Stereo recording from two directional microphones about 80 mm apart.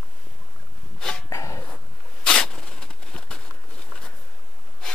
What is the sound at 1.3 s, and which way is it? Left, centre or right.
Dog, left.